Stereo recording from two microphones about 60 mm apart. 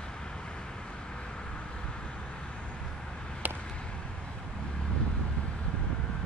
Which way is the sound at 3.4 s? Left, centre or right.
Right.